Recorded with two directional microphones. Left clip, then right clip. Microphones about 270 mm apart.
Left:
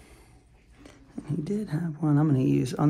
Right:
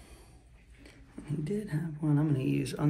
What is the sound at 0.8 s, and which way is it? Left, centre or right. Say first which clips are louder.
Speech: left 6 dB; left.